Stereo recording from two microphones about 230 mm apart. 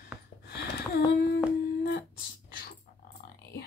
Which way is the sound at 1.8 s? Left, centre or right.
Left.